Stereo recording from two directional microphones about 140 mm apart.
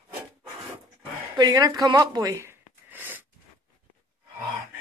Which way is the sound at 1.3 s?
30° right (ahead or behind).